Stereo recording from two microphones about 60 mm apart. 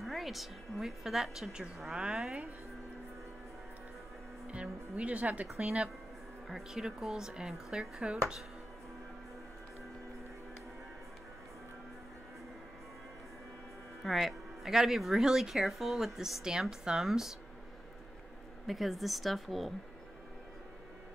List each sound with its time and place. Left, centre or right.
0.0 s a woman's voice: centre
4.5 s speech: right
6.5 s speech: centre
14.0 s a woman's voice: centre
18.7 s a woman's voice: centre